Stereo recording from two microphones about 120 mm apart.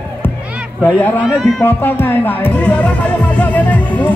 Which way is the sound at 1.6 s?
15° left (ahead or behind).